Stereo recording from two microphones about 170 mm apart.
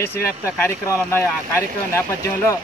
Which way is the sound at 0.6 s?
15° left (ahead or behind).